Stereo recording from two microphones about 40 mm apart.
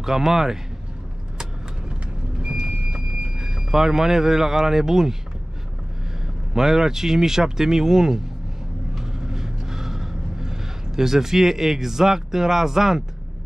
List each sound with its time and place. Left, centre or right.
0.0 s speech: centre
2.4 s vehicle: right
3.4 s speech: centre
6.5 s speech: centre
8.9 s vehicle: centre